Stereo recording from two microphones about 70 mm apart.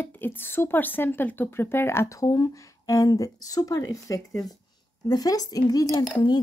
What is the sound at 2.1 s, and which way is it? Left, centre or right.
Speech, left.